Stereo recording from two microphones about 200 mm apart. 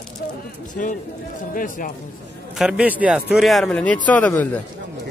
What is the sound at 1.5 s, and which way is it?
Speech, 45° left (ahead or behind).